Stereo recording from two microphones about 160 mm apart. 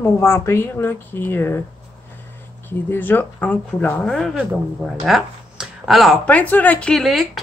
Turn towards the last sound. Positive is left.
turn(degrees=0)  # may be behind; listen again after turning